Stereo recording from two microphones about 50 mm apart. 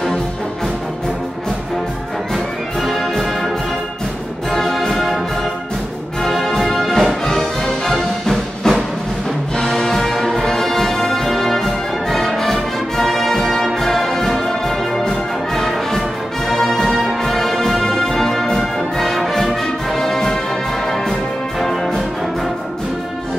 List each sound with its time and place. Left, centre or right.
2.3 s music: centre
6.2 s music: centre